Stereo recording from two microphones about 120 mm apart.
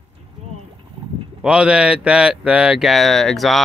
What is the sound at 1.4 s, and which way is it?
Speech, 10° right (ahead or behind).